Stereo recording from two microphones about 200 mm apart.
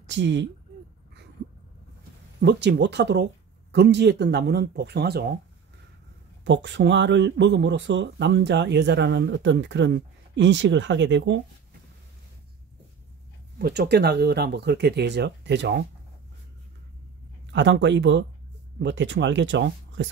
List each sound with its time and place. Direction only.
0.0 s speech: 60° right (ahead or behind)
2.4 s speech: 60° right (ahead or behind)
6.4 s speech: 60° right (ahead or behind)
13.6 s speech: 55° right (ahead or behind)
17.5 s speech: 60° right (ahead or behind)